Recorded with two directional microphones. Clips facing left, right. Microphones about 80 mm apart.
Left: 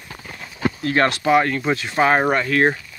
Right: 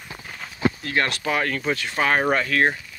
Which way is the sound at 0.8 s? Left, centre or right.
Left.